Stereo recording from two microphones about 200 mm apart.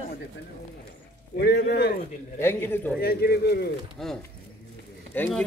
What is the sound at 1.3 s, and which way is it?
Speech, 55° left (ahead or behind).